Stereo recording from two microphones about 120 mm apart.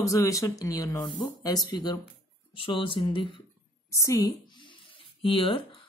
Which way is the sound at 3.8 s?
25° left (ahead or behind).